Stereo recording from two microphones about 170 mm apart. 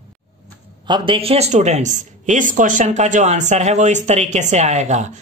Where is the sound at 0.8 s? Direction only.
30° right (ahead or behind).